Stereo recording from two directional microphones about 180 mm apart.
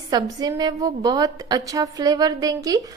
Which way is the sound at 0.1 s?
20° right (ahead or behind).